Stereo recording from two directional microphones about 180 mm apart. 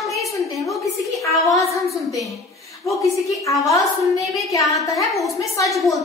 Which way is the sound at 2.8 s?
15° left (ahead or behind).